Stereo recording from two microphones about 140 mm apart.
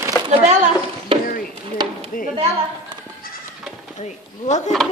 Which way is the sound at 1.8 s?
30° right (ahead or behind).